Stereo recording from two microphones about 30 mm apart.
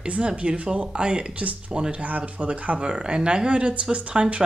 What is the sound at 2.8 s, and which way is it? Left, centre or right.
Speech, right.